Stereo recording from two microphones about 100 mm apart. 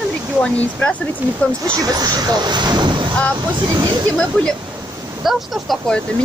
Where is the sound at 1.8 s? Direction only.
40° right (ahead or behind).